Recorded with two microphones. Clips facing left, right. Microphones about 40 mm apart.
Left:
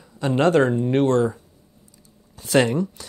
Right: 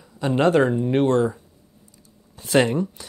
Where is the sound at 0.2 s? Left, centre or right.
Centre.